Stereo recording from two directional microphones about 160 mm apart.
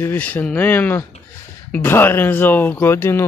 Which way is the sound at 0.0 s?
10° left (ahead or behind).